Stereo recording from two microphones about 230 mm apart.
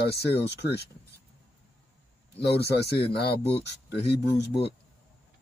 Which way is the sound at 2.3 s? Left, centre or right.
Left.